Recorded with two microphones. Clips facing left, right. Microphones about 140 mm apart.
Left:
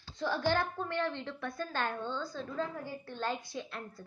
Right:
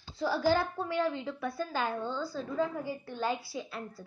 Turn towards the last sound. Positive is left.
turn(degrees=-5)  # may be behind; listen again after turning